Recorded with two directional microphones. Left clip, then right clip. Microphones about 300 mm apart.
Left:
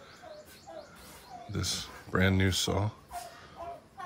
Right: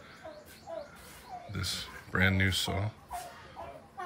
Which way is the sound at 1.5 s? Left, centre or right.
Centre.